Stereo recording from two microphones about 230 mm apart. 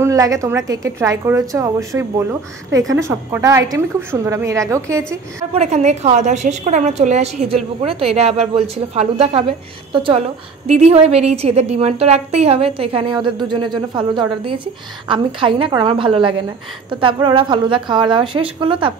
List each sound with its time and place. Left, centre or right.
0.0 s a woman's voice: centre
5.5 s a woman's voice: right